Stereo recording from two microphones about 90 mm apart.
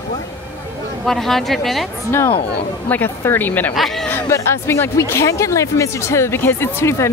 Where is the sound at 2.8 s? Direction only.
20° left (ahead or behind).